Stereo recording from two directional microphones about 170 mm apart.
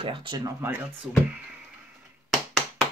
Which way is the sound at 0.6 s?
15° right (ahead or behind).